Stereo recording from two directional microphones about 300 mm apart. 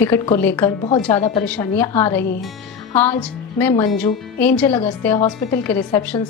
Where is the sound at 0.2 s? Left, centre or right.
Centre.